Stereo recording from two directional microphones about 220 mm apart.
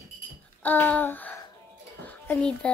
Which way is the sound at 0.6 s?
5° left (ahead or behind).